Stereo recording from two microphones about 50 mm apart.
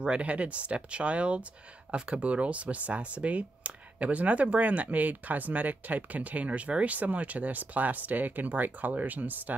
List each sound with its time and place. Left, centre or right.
0.0 s speech: right